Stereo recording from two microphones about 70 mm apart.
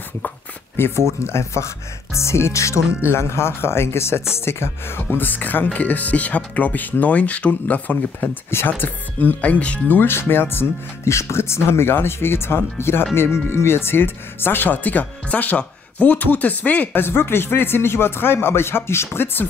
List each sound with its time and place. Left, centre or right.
0.7 s speech: left